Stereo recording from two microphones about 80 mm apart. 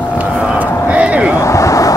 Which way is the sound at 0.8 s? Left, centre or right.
Centre.